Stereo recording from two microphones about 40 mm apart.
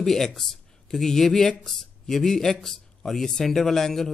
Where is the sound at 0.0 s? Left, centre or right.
Centre.